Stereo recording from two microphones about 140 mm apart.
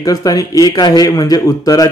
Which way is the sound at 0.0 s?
25° left (ahead or behind).